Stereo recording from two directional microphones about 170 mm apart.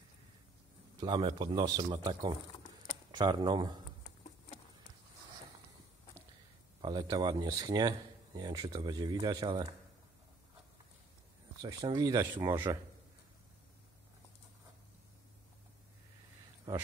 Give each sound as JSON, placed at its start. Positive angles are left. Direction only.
{"t": 0.9, "sound": "speech", "side_deg": -25}
{"t": 6.8, "sound": "speech", "side_deg": -25}
{"t": 11.6, "sound": "speech", "side_deg": -20}
{"t": 16.7, "sound": "a sound", "side_deg": -20}